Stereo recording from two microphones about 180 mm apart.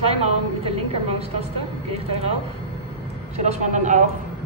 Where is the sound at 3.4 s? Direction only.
40° right (ahead or behind).